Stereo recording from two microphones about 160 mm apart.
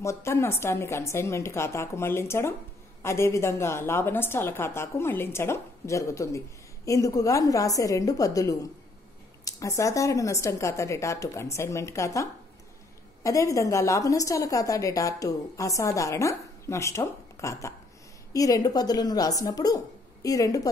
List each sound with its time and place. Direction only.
0.0 s a woman's voice: 15° left (ahead or behind)